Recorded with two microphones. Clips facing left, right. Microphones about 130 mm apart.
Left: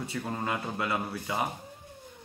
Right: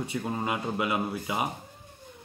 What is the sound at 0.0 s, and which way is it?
Speech, 15° right (ahead or behind).